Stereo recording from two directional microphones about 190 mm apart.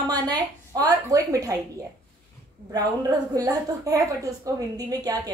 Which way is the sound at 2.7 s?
20° right (ahead or behind).